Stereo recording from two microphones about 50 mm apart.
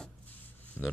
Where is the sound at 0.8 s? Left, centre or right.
Centre.